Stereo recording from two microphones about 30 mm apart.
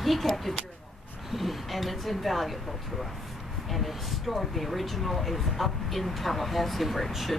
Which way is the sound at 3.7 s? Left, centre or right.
Centre.